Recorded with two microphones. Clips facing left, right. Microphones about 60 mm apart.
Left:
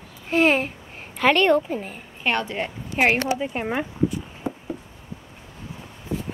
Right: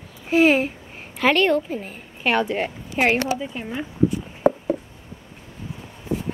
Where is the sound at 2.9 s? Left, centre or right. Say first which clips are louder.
Even; centre.